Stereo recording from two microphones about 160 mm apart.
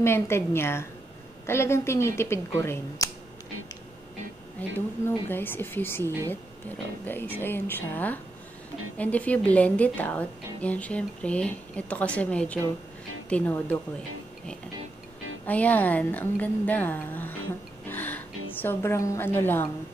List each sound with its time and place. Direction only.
0.0 s a woman's voice: 15° left (ahead or behind)
4.6 s a woman's voice: 10° left (ahead or behind)
15.4 s a woman's voice: 10° left (ahead or behind)